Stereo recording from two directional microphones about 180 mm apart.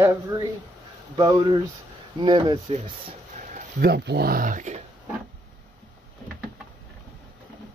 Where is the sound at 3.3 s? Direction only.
55° right (ahead or behind).